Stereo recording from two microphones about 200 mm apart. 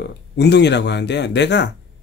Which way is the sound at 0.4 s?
60° left (ahead or behind).